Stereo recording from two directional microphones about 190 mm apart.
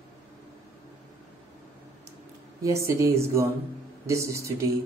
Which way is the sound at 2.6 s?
15° right (ahead or behind).